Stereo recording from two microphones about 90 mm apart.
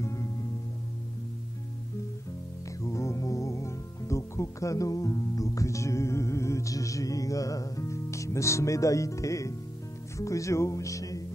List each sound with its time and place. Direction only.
0.0 s music: 35° left (ahead or behind)
2.8 s music: 35° left (ahead or behind)
10.1 s speech: 35° left (ahead or behind)